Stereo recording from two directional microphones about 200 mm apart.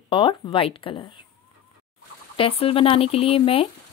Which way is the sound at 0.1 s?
25° left (ahead or behind).